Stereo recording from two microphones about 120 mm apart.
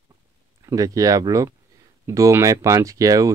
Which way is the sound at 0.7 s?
30° right (ahead or behind).